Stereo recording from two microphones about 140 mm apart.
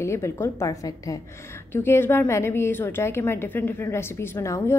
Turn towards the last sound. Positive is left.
turn(degrees=20)  # may be behind; listen again after turning